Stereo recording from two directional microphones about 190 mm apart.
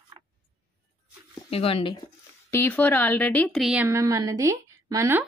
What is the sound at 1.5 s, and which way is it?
Speech, 30° left (ahead or behind).